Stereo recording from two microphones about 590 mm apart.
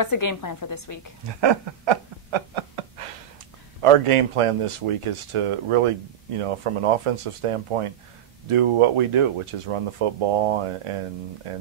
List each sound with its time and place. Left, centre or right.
0.0 s a woman's voice: left
1.2 s a sound: right
3.8 s speech: right